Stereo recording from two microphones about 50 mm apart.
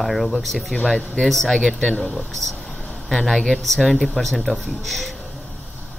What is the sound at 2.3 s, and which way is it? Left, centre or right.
Speech, centre.